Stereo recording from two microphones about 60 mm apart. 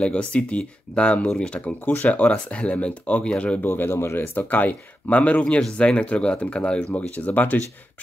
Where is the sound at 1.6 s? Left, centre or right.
Left.